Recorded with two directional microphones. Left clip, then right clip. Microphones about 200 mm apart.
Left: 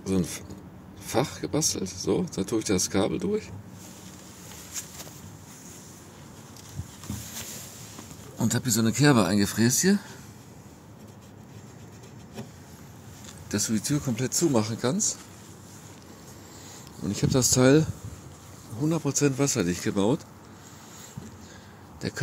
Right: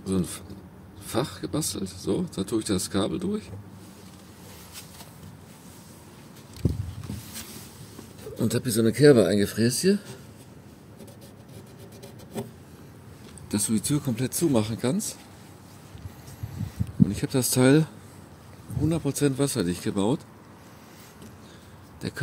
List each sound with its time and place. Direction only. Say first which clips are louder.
0.0 s speech: left 1 dB; 10° right (ahead or behind)
8.4 s speech: right 2 dB; 15° right (ahead or behind)
13.5 s speech: right 1 dB; 25° right (ahead or behind)
17.1 s speech: left 2 dB; 5° right (ahead or behind)
17.4 s speech: left 1 dB; 25° right (ahead or behind)
22.0 s a sound: left 2 dB; 10° right (ahead or behind)